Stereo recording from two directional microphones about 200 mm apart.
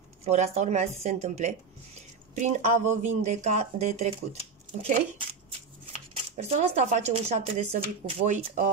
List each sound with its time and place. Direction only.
0.2 s speech: 35° right (ahead or behind)
5.9 s speech: 35° right (ahead or behind)